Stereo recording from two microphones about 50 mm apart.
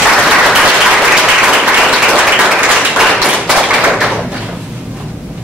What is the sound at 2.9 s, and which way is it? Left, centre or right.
Tap, centre.